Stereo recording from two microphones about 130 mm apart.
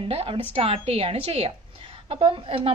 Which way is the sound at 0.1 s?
45° right (ahead or behind).